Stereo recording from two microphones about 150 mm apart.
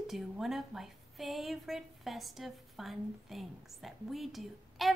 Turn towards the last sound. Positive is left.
turn(degrees=0)  # may be behind; listen again after turning